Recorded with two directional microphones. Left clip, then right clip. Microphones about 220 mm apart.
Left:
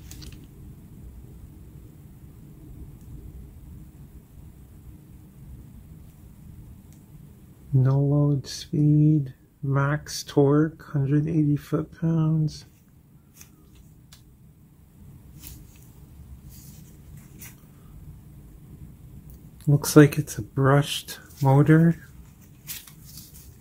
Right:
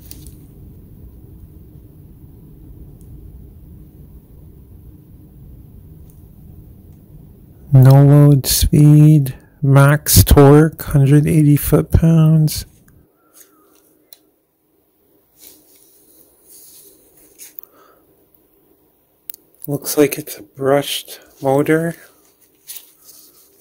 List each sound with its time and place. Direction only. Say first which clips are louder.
7.8 s speech: right 13 dB; 55° right (ahead or behind)
19.7 s speech: right 2 dB; 40° right (ahead or behind)